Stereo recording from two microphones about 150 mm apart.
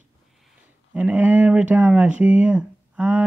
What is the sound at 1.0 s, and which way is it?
Speech, 10° right (ahead or behind).